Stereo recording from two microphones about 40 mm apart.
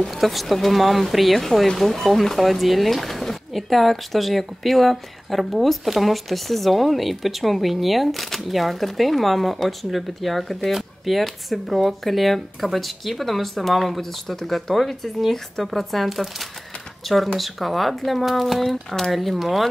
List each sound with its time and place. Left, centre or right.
0.0 s speech: centre